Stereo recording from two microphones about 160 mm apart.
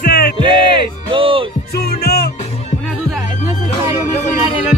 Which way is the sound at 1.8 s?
80° left.